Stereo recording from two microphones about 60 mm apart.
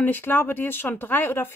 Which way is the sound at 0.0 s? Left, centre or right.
Left.